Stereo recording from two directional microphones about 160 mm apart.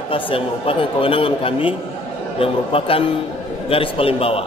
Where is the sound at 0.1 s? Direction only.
35° left (ahead or behind).